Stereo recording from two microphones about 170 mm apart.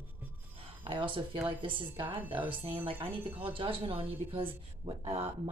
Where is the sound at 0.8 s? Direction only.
30° right (ahead or behind).